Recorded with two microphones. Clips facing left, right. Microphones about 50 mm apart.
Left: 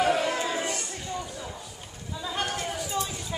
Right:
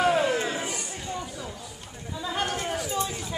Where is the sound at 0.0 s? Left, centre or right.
Centre.